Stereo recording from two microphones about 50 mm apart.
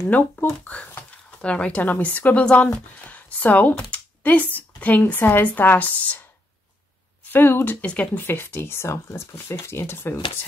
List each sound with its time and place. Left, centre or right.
0.1 s speech: left
5.0 s speech: left
7.3 s speech: left
7.8 s speech: left
8.2 s speech: left
8.8 s speech: left